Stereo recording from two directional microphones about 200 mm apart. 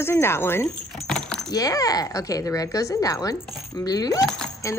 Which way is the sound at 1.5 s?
15° left (ahead or behind).